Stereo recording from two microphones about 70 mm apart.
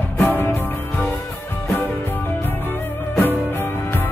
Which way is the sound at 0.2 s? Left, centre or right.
Left.